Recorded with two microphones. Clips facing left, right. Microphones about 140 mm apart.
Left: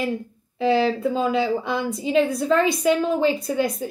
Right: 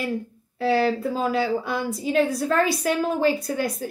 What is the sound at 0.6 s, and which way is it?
A woman's voice, centre (ahead or behind).